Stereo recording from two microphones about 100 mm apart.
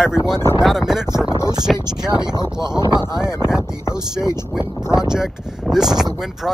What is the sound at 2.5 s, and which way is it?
Speech, 40° right (ahead or behind).